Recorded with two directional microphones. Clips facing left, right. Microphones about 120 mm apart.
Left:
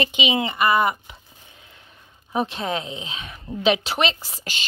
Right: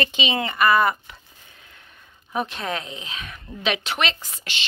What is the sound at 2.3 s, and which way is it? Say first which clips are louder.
Speech: left 2 dB; 30° left (ahead or behind).